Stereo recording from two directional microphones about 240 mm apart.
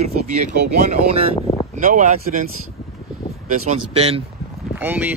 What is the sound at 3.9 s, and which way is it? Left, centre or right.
Speech, right.